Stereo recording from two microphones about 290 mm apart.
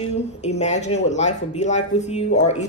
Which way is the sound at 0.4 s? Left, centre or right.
Left.